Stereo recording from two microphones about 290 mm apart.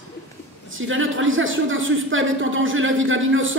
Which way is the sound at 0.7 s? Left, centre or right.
Right.